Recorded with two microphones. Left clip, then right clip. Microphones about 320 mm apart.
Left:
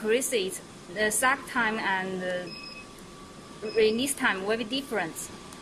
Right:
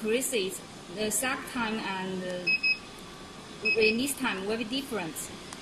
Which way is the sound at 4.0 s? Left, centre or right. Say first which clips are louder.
Left 4 dB; left.